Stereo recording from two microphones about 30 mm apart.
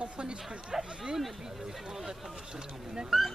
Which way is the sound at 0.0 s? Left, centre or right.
Right.